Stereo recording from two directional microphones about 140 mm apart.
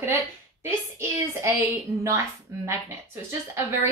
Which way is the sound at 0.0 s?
20° right (ahead or behind).